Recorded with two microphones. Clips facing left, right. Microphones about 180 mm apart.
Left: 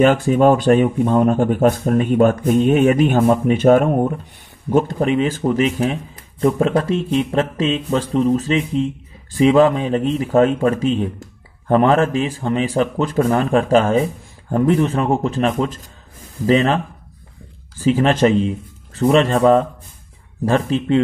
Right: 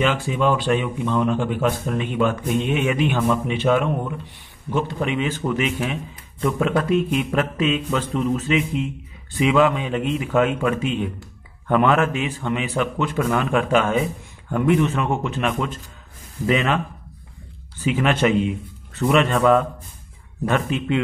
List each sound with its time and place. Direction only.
0.0 s a man's voice: 45° left (ahead or behind)